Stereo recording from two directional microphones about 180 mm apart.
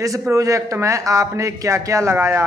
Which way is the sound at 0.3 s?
15° right (ahead or behind).